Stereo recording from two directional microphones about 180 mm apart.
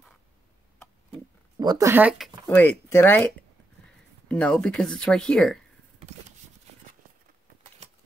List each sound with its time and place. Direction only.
1.6 s speech: 20° right (ahead or behind); by 3.3 s 10° left (ahead or behind)
4.3 s speech: 5° left (ahead or behind)
7.8 s a sound: 35° right (ahead or behind)